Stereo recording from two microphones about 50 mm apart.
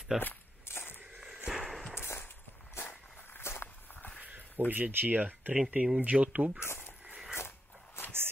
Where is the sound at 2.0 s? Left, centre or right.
Left.